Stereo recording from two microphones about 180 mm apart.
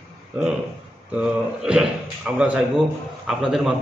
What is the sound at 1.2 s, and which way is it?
A man's voice, 5° right (ahead or behind).